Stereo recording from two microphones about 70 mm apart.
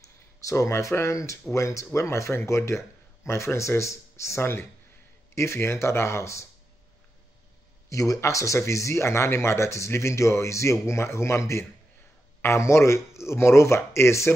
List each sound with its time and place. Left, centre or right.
0.4 s speech: left
7.9 s speech: left